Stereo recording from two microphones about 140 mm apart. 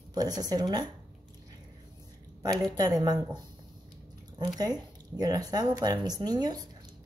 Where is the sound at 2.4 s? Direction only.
25° right (ahead or behind).